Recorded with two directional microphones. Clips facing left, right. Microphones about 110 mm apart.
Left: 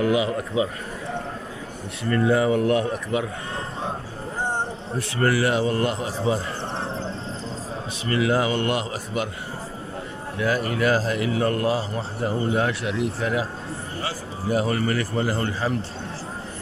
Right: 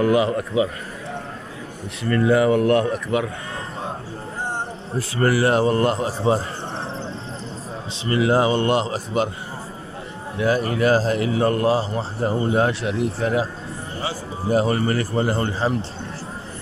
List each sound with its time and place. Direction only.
0.0 s a man's voice: 50° right (ahead or behind)
2.1 s speech: 75° right (ahead or behind)
5.2 s a man's voice: 30° right (ahead or behind)
5.5 s a man's voice: 40° right (ahead or behind)
8.1 s a man's voice: 30° right (ahead or behind)
10.4 s a man's voice: 30° right (ahead or behind)
14.5 s a man's voice: 30° right (ahead or behind)